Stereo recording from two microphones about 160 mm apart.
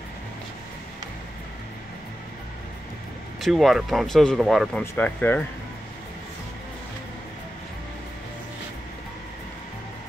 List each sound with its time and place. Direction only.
3.3 s speech: centre (ahead or behind)
4.9 s speech: 10° left (ahead or behind)